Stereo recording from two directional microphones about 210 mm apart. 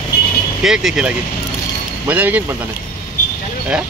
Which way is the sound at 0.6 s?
Centre (ahead or behind).